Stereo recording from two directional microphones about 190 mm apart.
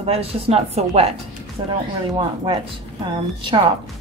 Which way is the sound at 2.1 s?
25° right (ahead or behind).